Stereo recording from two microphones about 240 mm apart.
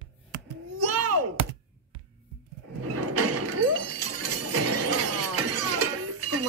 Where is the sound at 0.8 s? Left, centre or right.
Right.